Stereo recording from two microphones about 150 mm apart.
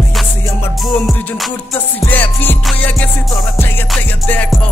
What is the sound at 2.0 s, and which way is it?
Music, 10° left (ahead or behind).